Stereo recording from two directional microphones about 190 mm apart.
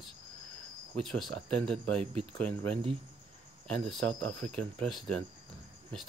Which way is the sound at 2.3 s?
5° left (ahead or behind).